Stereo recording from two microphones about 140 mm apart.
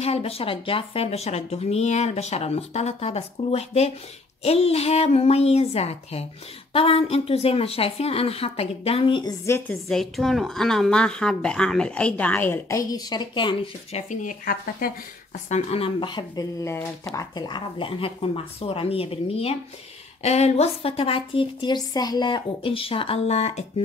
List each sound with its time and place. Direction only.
0.0 s speech: 45° left (ahead or behind)
9.8 s a woman's voice: 5° left (ahead or behind); by 13.6 s 35° left (ahead or behind)
14.2 s speech: 90° left
15.5 s a woman's voice: 45° left (ahead or behind)